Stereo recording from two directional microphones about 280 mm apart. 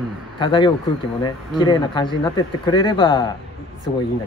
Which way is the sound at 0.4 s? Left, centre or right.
Centre.